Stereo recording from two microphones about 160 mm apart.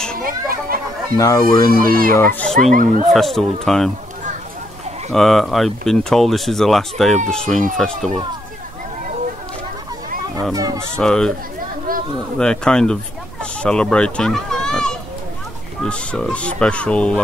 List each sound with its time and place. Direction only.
0.2 s children playing: 65° right (ahead or behind)
1.1 s speech: 20° left (ahead or behind)
1.7 s speech: 65° right (ahead or behind)
2.1 s speech: 10° left (ahead or behind)
5.1 s speech: centre (ahead or behind)
10.5 s speech: 20° right (ahead or behind)
11.0 s speech: 5° left (ahead or behind)
11.9 s a sound: 65° right (ahead or behind)
12.4 s speech: 5° left (ahead or behind)